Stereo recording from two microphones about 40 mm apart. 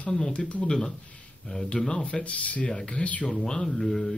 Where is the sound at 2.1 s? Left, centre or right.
Left.